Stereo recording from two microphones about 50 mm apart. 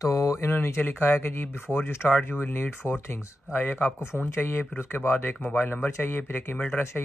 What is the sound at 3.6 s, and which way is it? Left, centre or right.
Speech, left.